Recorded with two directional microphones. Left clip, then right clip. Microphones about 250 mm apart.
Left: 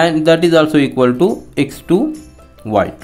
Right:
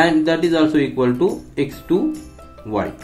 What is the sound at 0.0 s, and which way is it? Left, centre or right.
Speech, left.